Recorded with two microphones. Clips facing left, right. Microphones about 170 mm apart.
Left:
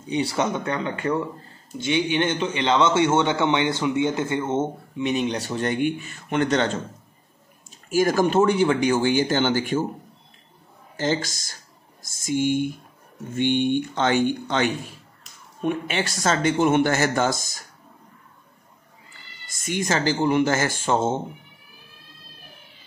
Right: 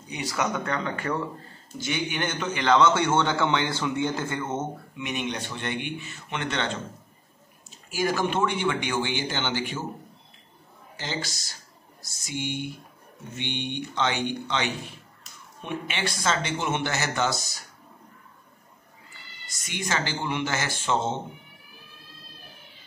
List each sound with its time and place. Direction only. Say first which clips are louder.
0.0 s a man's voice: left 6 dB; 30° left (ahead or behind)
7.9 s speech: left 7 dB; 45° left (ahead or behind)
11.0 s speech: left 9 dB; 45° left (ahead or behind)
19.5 s speech: left 6 dB; 45° left (ahead or behind)